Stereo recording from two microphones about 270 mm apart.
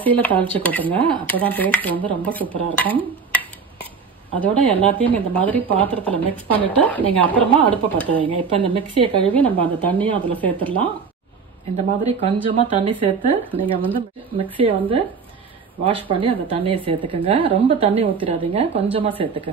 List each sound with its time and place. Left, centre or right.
0.2 s speech: centre
4.4 s speech: centre
8.1 s speech: centre
9.3 s speech: centre
10.0 s speech: centre
10.4 s speech: centre
11.7 s speech: right
13.4 s speech: centre
14.6 s speech: centre